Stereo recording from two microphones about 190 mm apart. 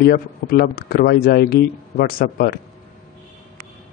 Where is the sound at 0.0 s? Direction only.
50° left (ahead or behind).